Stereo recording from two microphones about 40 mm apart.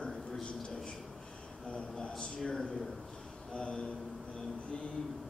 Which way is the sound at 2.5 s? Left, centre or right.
Centre.